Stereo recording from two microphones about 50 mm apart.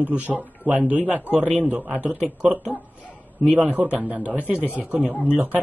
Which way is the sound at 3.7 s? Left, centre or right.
Right.